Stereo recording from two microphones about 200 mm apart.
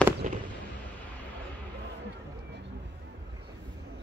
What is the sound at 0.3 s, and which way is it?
Fireworks, 35° right (ahead or behind).